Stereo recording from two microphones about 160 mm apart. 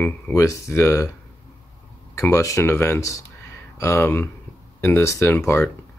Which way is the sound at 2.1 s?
20° left (ahead or behind).